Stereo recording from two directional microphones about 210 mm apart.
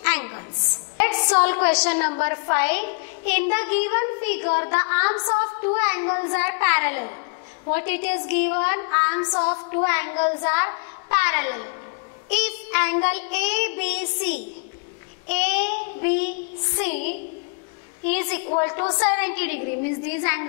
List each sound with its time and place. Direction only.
0.0 s a sound: 15° left (ahead or behind)
2.2 s a woman's voice: 15° left (ahead or behind)
5.8 s a woman's voice: 15° left (ahead or behind)
6.0 s a child's voice: 25° left (ahead or behind)
6.3 s a woman's voice: 15° left (ahead or behind)
9.8 s a woman's voice: 15° left (ahead or behind)
16.9 s a woman's voice: 50° left (ahead or behind)
18.0 s a woman's voice: 10° left (ahead or behind)
19.6 s a woman's voice: 55° left (ahead or behind)
20.1 s a woman's voice: 15° left (ahead or behind)